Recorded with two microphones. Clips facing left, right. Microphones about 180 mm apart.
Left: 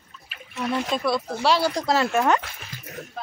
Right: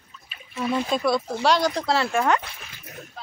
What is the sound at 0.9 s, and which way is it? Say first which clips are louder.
A child's voice: right 2 dB; centre (ahead or behind).